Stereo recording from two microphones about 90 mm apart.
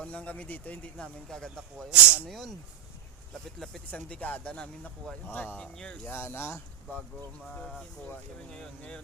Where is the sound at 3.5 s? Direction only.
5° left (ahead or behind).